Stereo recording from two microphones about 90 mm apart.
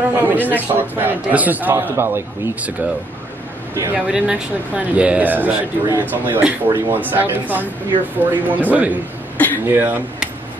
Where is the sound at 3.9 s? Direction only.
15° right (ahead or behind).